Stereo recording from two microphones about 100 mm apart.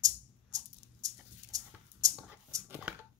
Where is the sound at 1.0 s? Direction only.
35° right (ahead or behind).